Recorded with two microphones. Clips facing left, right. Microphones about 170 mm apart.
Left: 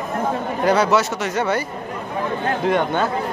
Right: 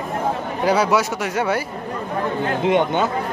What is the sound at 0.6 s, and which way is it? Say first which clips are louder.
Speech: left 1 dB; 10° right (ahead or behind).